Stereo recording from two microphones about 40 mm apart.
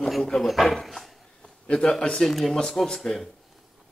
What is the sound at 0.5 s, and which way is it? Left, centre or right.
Dog, centre.